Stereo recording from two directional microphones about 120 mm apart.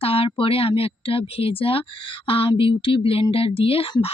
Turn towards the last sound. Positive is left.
turn(degrees=50)  # may be behind; listen again after turning